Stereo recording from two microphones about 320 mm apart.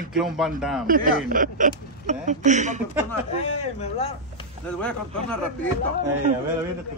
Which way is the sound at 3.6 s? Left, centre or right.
Centre.